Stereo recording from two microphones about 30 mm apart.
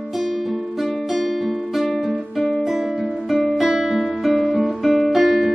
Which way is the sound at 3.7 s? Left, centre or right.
Centre.